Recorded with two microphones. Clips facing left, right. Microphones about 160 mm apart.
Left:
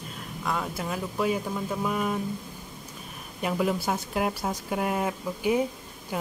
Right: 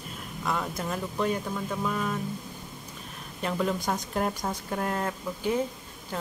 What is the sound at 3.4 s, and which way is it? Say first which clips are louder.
Speech: left 2 dB; 10° left (ahead or behind).